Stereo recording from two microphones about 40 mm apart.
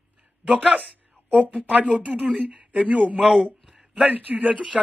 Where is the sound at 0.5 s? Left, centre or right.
Right.